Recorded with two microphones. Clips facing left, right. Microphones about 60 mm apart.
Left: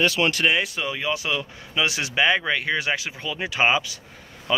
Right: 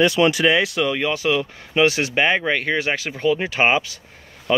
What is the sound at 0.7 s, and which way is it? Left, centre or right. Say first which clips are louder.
Speech: right 5 dB; right.